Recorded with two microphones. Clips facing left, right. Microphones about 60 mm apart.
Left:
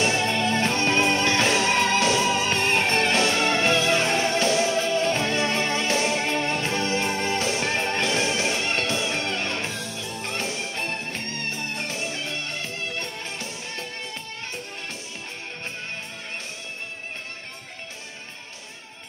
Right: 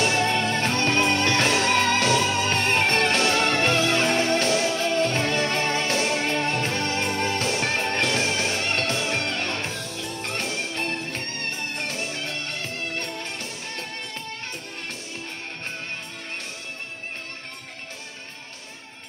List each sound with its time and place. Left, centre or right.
0.0 s music: right